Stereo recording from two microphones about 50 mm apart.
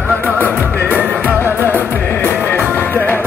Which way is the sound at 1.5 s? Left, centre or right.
Right.